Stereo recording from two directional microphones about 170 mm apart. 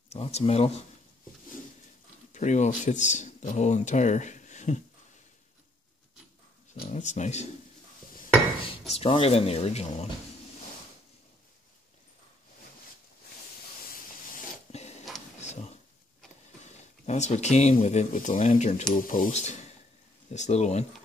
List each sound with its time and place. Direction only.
0.1 s speech: 40° left (ahead or behind)
2.3 s speech: 45° left (ahead or behind)
6.7 s speech: 45° left (ahead or behind)
8.9 s speech: 35° left (ahead or behind)
14.3 s a sound: 40° left (ahead or behind)
16.7 s speech: 40° left (ahead or behind)
18.9 s speech: 55° left (ahead or behind)